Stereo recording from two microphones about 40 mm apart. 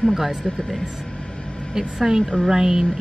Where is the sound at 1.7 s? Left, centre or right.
Centre.